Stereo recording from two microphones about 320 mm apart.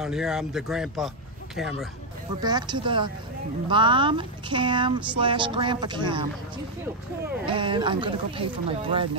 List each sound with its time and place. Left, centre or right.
0.0 s speech: centre
2.4 s speech: centre
7.4 s speech: centre